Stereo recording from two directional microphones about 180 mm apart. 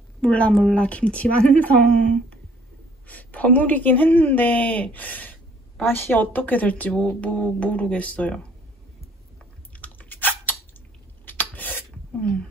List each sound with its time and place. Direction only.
0.2 s a woman's voice: 5° left (ahead or behind)
9.7 s chewing: 10° left (ahead or behind)
11.2 s a sound: 10° left (ahead or behind)